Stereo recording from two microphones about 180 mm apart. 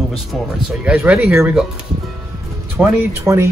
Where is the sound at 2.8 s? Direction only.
5° right (ahead or behind).